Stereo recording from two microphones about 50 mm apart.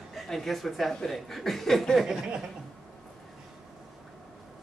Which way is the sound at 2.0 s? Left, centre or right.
Centre.